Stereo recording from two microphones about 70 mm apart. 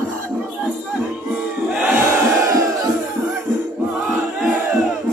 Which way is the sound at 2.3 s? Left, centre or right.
Right.